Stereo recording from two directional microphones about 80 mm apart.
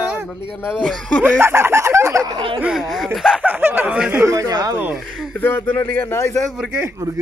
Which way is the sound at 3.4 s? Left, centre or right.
Right.